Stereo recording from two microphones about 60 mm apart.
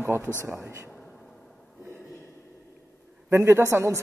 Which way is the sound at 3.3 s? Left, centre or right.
Right.